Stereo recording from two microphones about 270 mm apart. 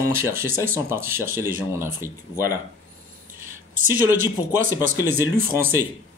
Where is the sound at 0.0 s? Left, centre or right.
Centre.